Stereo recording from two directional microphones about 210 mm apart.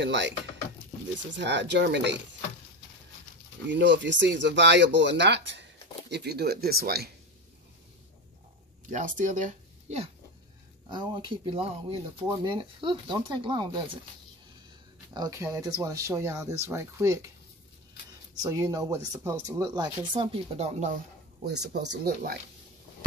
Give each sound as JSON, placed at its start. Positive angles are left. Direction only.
{"t": 0.0, "sound": "speech", "side_deg": -55}
{"t": 1.3, "sound": "speech", "side_deg": -55}
{"t": 3.6, "sound": "speech", "side_deg": -55}
{"t": 8.8, "sound": "speech", "side_deg": -40}
{"t": 10.9, "sound": "speech", "side_deg": -20}
{"t": 15.1, "sound": "speech", "side_deg": -15}
{"t": 18.4, "sound": "speech", "side_deg": -15}
{"t": 21.6, "sound": "speech", "side_deg": -55}